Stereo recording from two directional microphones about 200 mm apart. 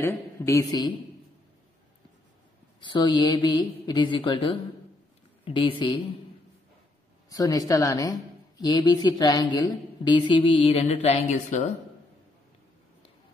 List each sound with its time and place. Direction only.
0.0 s speech: 15° left (ahead or behind)
2.8 s speech: 20° left (ahead or behind)
7.2 s speech: 15° left (ahead or behind); by 11.7 s 35° left (ahead or behind)